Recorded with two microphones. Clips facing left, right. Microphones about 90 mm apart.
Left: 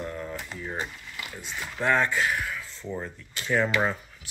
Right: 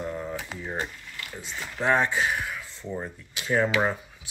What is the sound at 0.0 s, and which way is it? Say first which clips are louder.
Typewriter: right 2 dB; 15° right (ahead or behind).